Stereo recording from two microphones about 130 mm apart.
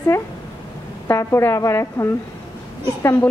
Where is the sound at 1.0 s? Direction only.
20° left (ahead or behind).